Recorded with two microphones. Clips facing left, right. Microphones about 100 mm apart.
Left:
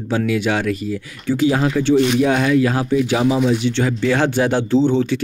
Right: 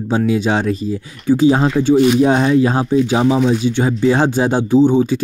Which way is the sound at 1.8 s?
5° right (ahead or behind).